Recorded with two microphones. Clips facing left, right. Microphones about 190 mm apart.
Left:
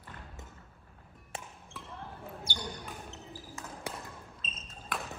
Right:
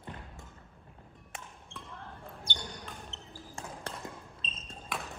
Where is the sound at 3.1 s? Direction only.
10° left (ahead or behind).